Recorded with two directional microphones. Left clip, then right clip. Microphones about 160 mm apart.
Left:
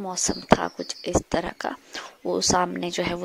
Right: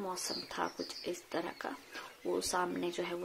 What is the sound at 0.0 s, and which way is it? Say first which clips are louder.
Speech: left 11 dB; 60° left (ahead or behind).